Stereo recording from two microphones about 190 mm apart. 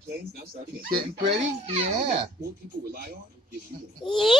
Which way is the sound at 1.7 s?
30° right (ahead or behind).